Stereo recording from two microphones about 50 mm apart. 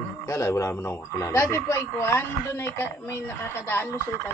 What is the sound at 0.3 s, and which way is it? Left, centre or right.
Speech, left.